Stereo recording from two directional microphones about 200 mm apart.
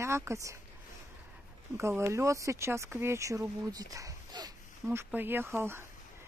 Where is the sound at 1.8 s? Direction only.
15° right (ahead or behind).